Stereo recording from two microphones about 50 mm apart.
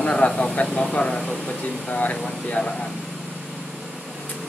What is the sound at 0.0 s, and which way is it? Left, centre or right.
Speech, left.